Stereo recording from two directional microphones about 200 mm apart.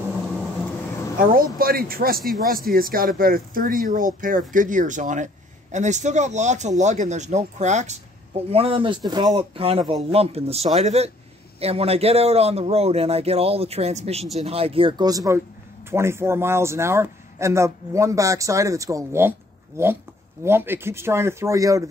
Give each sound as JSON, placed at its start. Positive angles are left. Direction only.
{"t": 1.2, "sound": "a man's voice", "side_deg": -45}
{"t": 20.4, "sound": "speech", "side_deg": -10}